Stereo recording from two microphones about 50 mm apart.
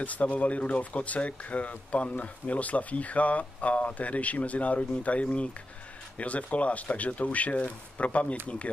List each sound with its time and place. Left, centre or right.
0.0 s speech: left